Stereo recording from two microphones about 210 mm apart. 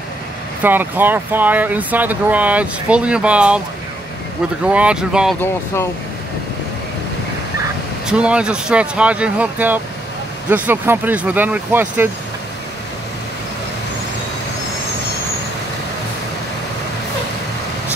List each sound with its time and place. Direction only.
0.6 s speech: 10° right (ahead or behind)
4.6 s speech: 5° right (ahead or behind)
8.1 s speech: 5° right (ahead or behind)